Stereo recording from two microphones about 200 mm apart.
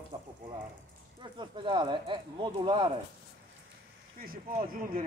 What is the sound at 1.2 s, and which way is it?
Speech, 25° right (ahead or behind).